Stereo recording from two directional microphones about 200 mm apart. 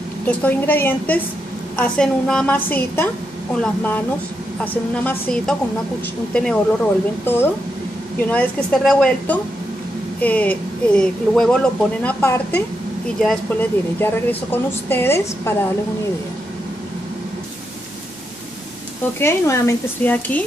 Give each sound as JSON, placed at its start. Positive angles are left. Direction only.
{"t": 0.3, "sound": "a woman's voice", "side_deg": 10}
{"t": 5.0, "sound": "a woman's voice", "side_deg": 5}
{"t": 19.1, "sound": "a woman's voice", "side_deg": 15}